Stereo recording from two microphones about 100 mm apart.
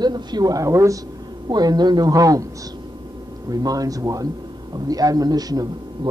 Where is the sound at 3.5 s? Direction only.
40° right (ahead or behind).